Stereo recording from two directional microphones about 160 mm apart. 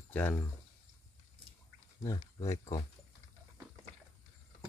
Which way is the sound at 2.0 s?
20° left (ahead or behind).